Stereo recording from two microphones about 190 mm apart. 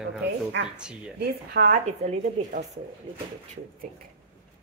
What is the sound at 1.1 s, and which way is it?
A woman's voice, 55° right (ahead or behind).